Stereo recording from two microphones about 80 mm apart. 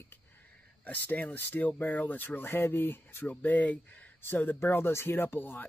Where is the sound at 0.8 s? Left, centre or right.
Left.